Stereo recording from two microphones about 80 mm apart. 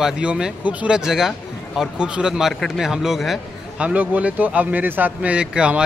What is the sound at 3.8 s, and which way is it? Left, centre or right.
A man's voice, centre.